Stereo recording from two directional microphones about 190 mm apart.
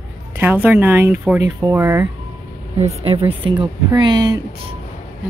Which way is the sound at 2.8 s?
30° right (ahead or behind).